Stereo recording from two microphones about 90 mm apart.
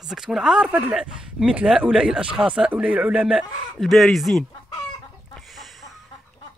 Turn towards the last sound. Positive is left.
turn(degrees=0)  # may be behind; listen again after turning